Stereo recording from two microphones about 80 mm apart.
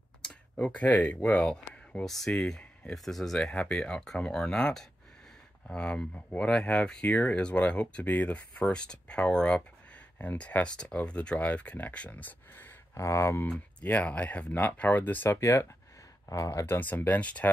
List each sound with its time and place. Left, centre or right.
0.2 s speech: centre
12.9 s speech: left
15.2 s speech: left
16.6 s speech: left